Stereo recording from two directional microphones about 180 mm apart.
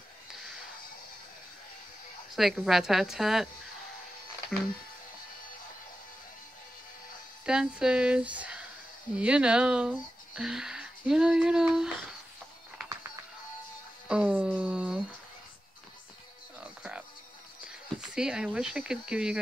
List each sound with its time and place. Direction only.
2.3 s speech: centre (ahead or behind)
7.4 s speech: 5° right (ahead or behind)
14.0 s speech: 5° right (ahead or behind)
16.5 s music: 5° right (ahead or behind)
17.6 s speech: 5° right (ahead or behind)